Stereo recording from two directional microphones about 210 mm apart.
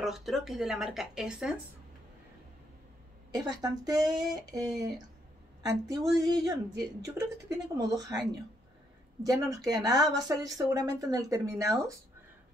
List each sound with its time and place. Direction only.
0.0 s speech: centre (ahead or behind)
3.3 s speech: 20° right (ahead or behind)